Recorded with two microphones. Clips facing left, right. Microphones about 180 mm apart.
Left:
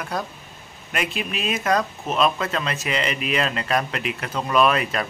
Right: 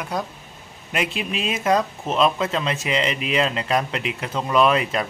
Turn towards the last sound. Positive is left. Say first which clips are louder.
# right 1 dB
turn(degrees=-20)  # may be behind; listen again after turning